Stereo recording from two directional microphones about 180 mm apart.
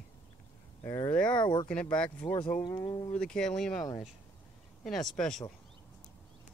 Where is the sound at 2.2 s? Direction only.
25° left (ahead or behind).